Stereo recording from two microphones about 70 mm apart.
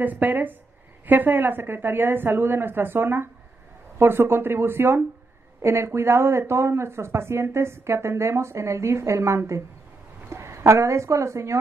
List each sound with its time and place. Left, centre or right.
0.0 s a woman's voice: right